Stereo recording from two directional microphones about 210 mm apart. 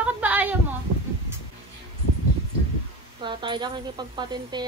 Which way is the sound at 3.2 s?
20° right (ahead or behind).